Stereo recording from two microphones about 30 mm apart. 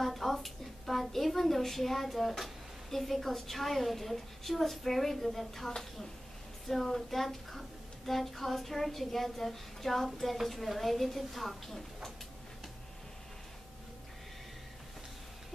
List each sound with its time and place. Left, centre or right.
0.0 s a woman's voice: centre
6.7 s a woman's voice: centre